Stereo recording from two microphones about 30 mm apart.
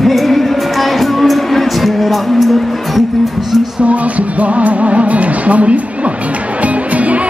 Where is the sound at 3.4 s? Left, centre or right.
Centre.